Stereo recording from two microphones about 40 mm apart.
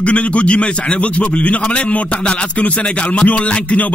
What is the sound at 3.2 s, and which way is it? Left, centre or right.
Music, left.